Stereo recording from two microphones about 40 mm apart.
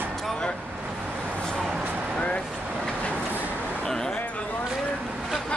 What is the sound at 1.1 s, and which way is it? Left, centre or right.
Vehicle, right.